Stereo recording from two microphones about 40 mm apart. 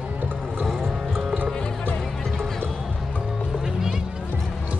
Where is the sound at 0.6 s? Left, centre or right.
Centre.